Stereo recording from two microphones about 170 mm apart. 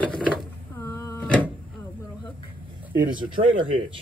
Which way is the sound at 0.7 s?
15° left (ahead or behind).